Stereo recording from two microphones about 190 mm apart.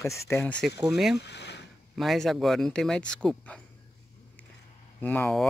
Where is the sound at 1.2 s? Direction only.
60° left (ahead or behind).